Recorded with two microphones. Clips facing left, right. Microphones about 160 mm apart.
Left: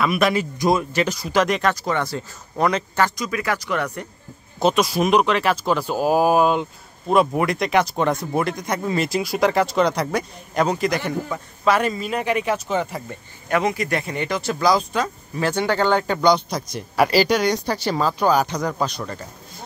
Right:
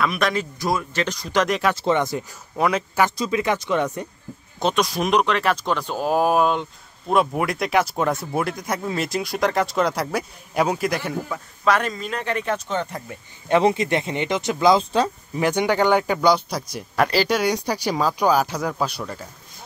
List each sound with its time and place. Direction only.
0.0 s speech: 5° left (ahead or behind)
1.8 s speech: 20° right (ahead or behind)
2.5 s a man's voice: 5° right (ahead or behind)
3.2 s speech: 25° right (ahead or behind)
4.6 s speech: 5° left (ahead or behind)
13.5 s speech: 25° right (ahead or behind)
15.3 s a man's voice: 15° right (ahead or behind)
16.9 s speech: 5° left (ahead or behind)